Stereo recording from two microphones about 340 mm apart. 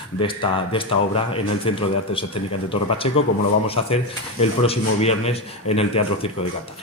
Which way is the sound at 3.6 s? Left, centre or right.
Centre.